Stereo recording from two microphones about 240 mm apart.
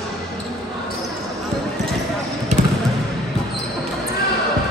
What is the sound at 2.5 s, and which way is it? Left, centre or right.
Basketball bounce, right.